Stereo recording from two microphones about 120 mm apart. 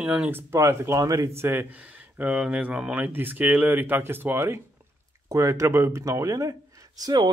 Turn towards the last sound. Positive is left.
turn(degrees=-35)  # may be behind; listen again after turning